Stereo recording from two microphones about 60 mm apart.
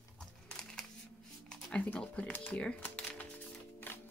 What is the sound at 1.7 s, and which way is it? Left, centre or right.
Speech, left.